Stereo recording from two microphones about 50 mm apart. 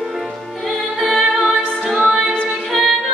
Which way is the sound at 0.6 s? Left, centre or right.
Centre.